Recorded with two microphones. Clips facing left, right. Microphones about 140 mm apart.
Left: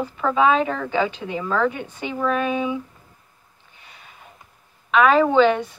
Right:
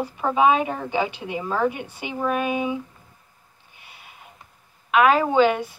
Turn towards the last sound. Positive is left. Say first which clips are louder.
# left 2 dB
turn(degrees=-10)  # may be behind; listen again after turning